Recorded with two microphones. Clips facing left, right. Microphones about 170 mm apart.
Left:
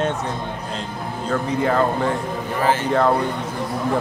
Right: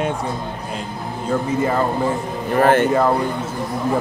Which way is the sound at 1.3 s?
5° right (ahead or behind).